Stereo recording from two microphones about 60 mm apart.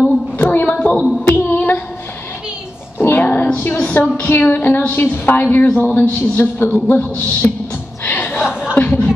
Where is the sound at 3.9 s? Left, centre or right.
Left.